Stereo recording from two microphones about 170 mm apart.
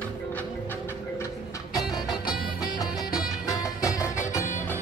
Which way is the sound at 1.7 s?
20° left (ahead or behind).